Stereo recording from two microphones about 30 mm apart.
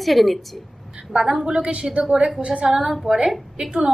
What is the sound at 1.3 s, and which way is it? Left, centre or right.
A woman's voice, right.